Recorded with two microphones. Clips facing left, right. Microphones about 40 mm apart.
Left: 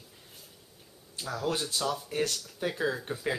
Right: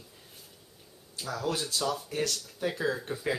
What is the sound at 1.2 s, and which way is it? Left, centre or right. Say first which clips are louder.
Speech: even; centre.